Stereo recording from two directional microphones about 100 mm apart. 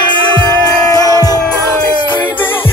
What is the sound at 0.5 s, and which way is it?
Music, 30° left (ahead or behind).